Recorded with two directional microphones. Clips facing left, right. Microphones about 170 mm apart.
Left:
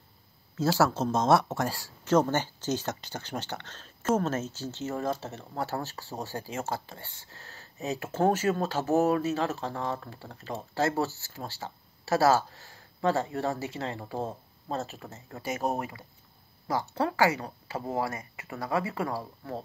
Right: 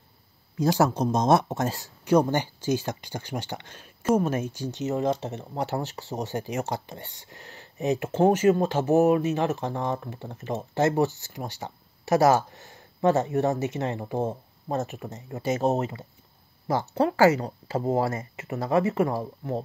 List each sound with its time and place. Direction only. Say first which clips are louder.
0.6 s speech: right 3 dB; 20° right (ahead or behind)